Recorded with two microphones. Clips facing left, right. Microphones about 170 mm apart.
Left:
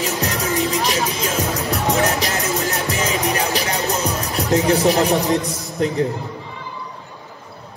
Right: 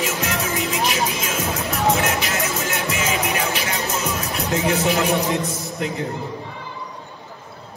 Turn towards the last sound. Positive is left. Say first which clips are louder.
# left 6 dB
turn(degrees=40)  # may be behind; listen again after turning